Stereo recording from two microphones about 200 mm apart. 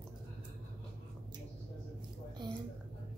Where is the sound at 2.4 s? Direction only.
20° right (ahead or behind).